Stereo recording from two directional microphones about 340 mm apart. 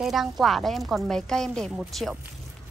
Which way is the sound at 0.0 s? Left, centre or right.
Centre.